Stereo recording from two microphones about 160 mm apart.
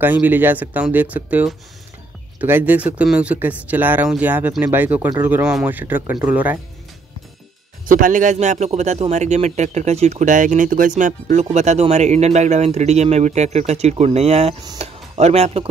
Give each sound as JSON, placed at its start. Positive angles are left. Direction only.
{"t": 0.0, "sound": "speech", "side_deg": -10}
{"t": 7.8, "sound": "speech", "side_deg": -60}